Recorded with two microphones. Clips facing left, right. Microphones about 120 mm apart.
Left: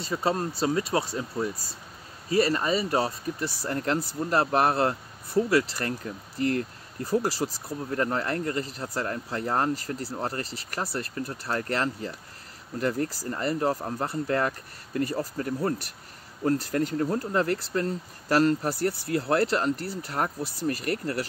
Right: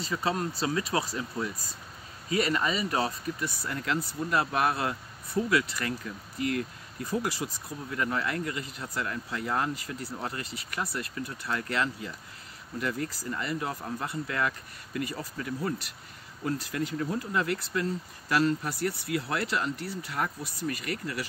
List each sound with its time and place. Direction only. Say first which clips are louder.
0.1 s speech: left 3 dB; 30° left (ahead or behind)
7.1 s speech: left 5 dB; 35° left (ahead or behind)